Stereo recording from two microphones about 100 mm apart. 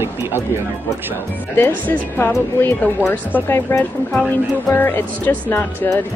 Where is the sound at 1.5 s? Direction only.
20° left (ahead or behind).